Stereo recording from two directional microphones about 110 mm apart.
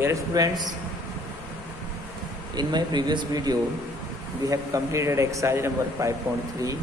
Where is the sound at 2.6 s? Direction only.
40° right (ahead or behind); by 6.1 s 25° right (ahead or behind).